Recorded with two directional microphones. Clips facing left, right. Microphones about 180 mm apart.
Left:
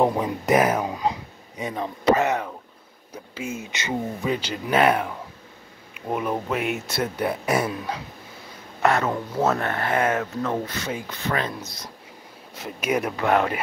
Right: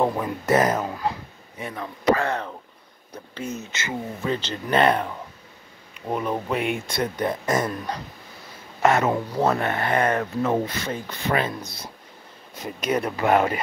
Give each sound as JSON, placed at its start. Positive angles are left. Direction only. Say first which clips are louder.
{"t": 0.0, "sound": "speech", "louder": "left 2 dB", "side_deg": 20}
{"t": 8.8, "sound": "speech", "louder": "right 2 dB", "side_deg": -5}
{"t": 10.4, "sound": "speech", "louder": "right 3 dB", "side_deg": -10}
{"t": 12.6, "sound": "speech", "louder": "even", "side_deg": 10}
{"t": 13.1, "sound": "speech", "louder": "right 3 dB", "side_deg": -5}